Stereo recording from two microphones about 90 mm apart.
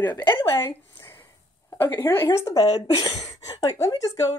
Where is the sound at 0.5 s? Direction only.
35° left (ahead or behind).